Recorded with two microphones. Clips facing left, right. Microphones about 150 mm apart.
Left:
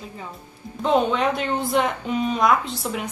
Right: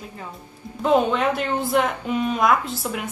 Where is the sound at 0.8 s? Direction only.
5° right (ahead or behind).